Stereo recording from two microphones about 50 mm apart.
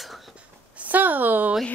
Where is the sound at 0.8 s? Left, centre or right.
Right.